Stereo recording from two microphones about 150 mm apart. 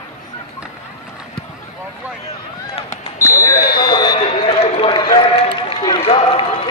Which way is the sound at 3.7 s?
25° left (ahead or behind).